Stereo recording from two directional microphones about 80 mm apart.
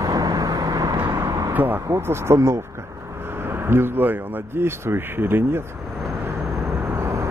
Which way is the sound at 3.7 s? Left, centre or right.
Right.